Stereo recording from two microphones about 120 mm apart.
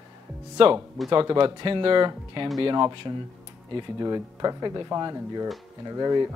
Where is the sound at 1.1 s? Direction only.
35° right (ahead or behind).